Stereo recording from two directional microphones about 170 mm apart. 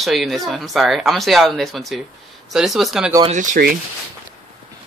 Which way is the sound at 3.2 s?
50° right (ahead or behind).